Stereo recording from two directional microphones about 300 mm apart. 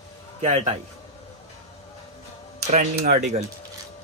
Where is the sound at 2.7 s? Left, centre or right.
Right.